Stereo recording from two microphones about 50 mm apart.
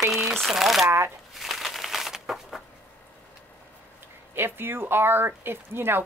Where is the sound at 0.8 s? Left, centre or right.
Right.